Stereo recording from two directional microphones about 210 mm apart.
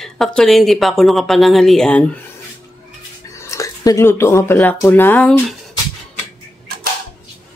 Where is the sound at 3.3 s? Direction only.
15° left (ahead or behind).